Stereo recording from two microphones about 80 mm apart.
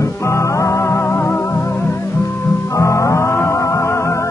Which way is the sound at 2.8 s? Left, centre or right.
Left.